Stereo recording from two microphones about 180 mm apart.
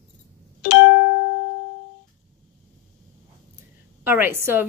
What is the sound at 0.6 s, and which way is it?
Music, 70° left (ahead or behind).